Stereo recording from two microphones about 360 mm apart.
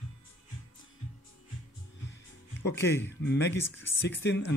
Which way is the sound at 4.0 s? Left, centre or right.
Left.